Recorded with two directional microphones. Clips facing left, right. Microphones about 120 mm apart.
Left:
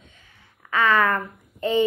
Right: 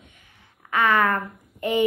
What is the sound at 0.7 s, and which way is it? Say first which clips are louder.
Speech: even; 15° right (ahead or behind).